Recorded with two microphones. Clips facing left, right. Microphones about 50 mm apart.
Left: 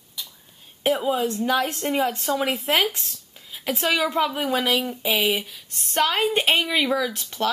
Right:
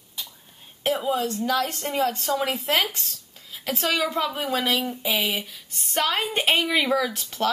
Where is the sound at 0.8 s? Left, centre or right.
Centre.